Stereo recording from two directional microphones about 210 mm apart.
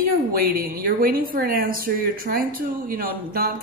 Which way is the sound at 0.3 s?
45° right (ahead or behind).